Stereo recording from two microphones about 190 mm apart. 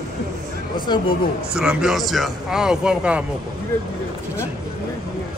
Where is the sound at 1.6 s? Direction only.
5° right (ahead or behind).